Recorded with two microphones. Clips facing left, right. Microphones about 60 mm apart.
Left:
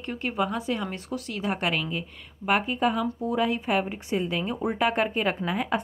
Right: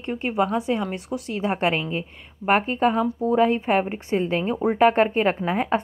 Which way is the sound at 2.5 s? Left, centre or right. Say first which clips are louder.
Right 4 dB; right.